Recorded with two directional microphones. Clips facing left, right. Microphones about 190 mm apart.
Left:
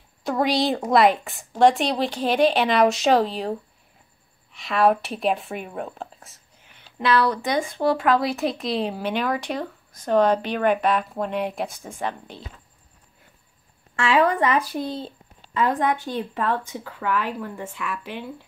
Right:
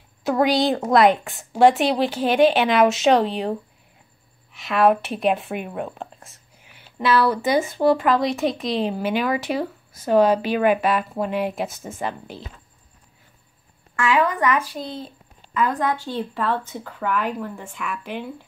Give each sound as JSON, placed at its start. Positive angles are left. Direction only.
{"t": 0.2, "sound": "speech", "side_deg": 0}
{"t": 13.9, "sound": "a woman's voice", "side_deg": 30}
{"t": 17.6, "sound": "speech", "side_deg": 0}